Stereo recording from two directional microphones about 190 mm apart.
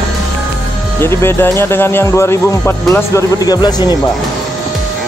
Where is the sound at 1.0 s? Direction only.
15° left (ahead or behind).